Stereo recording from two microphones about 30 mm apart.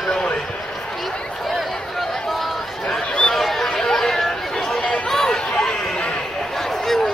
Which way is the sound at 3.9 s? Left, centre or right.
Centre.